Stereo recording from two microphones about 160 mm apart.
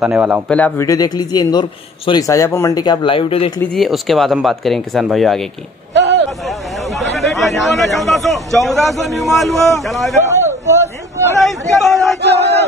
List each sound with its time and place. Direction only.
0.0 s a man's voice: 5° right (ahead or behind)
0.5 s speech: 5° left (ahead or behind)
0.7 s a man's voice: 20° left (ahead or behind)
3.7 s speech: centre (ahead or behind)
5.9 s a sound: 90° right
6.4 s speech: centre (ahead or behind)
10.3 s a sound: 15° right (ahead or behind)
11.4 s speech: centre (ahead or behind)